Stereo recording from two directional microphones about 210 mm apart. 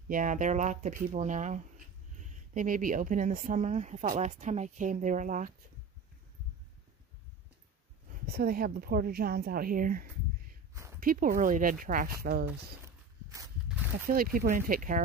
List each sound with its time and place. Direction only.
0.1 s speech: 40° right (ahead or behind)
8.3 s speech: 45° right (ahead or behind)
12.8 s a sound: 15° right (ahead or behind)
14.0 s speech: 45° right (ahead or behind)